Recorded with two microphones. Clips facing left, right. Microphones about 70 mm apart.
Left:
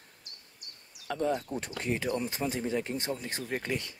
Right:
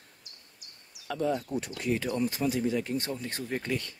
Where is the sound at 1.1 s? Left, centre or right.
Left.